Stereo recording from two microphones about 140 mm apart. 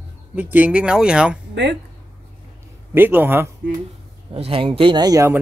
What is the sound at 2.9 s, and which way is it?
Speech, 15° right (ahead or behind).